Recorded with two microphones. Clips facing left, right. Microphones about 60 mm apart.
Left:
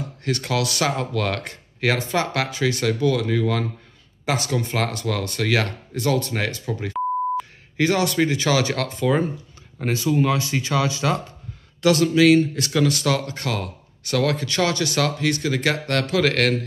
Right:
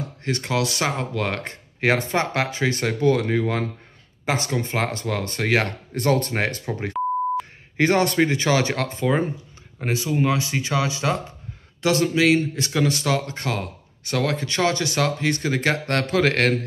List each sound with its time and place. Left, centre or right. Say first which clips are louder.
0.2 s speech: even; centre